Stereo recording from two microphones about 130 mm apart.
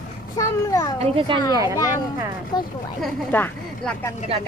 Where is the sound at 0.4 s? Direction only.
25° left (ahead or behind).